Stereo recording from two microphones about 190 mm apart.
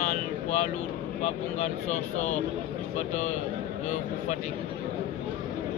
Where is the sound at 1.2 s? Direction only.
35° left (ahead or behind).